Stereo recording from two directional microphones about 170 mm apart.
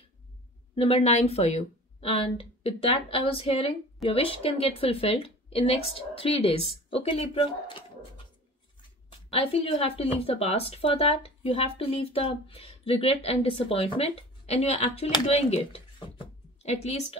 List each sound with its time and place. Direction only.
0.7 s speech: 35° left (ahead or behind)
9.3 s speech: 35° left (ahead or behind)